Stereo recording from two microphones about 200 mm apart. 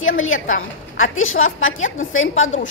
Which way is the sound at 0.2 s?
80° left.